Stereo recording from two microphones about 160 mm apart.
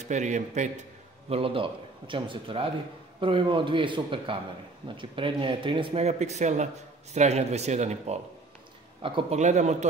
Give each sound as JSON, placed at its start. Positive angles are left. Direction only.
{"t": 0.0, "sound": "speech", "side_deg": -50}
{"t": 1.3, "sound": "a man's voice", "side_deg": -35}
{"t": 9.0, "sound": "a man's voice", "side_deg": -35}
{"t": 9.4, "sound": "speech", "side_deg": -45}